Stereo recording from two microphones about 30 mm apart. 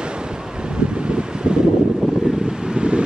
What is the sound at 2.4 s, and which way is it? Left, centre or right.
Vehicle, right.